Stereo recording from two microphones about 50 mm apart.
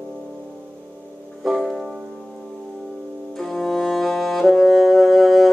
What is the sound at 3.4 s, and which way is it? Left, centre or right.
Music, centre.